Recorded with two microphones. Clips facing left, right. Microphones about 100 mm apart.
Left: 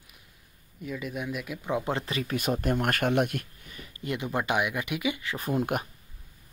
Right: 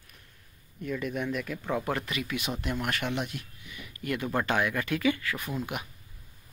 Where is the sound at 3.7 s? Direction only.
40° left (ahead or behind).